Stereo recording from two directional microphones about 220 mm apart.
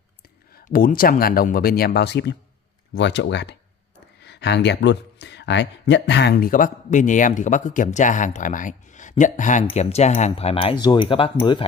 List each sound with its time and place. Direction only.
0.6 s speech: 40° left (ahead or behind); by 11.6 s 25° left (ahead or behind)